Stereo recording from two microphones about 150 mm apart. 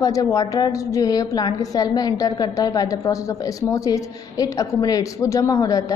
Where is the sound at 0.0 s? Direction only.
25° left (ahead or behind).